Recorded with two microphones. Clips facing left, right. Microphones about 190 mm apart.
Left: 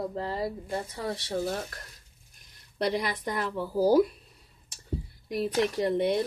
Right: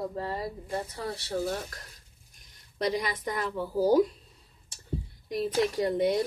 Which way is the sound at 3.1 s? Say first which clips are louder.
Left 1 dB; centre (ahead or behind).